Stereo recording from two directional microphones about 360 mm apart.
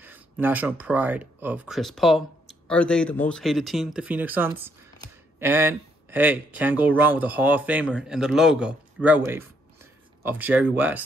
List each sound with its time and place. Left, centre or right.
0.0 s speech: centre